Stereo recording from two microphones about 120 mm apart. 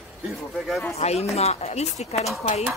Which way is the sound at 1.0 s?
60° left (ahead or behind).